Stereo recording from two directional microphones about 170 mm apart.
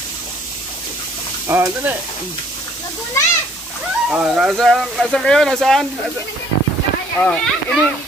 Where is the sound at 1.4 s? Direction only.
15° right (ahead or behind).